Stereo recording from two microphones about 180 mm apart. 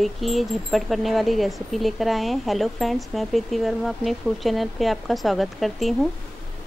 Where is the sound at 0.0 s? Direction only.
Centre (ahead or behind).